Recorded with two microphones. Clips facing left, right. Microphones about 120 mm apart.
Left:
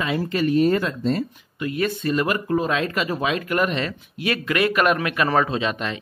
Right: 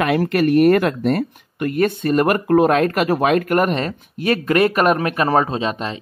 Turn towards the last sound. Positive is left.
turn(degrees=-35)  # may be behind; listen again after turning